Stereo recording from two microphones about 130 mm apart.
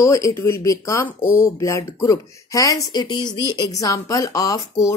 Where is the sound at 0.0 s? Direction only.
25° left (ahead or behind).